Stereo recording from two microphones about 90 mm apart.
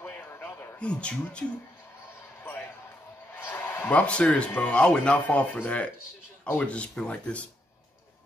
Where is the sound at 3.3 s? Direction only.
25° left (ahead or behind).